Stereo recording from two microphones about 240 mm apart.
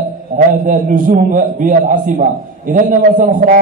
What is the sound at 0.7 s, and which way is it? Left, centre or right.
A man's voice, right.